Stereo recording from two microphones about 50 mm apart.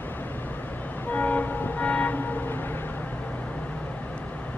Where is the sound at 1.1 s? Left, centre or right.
Left.